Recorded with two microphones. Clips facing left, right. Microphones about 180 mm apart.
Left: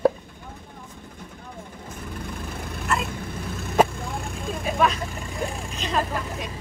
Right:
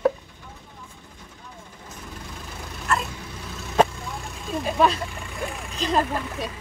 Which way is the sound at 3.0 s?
55° left (ahead or behind).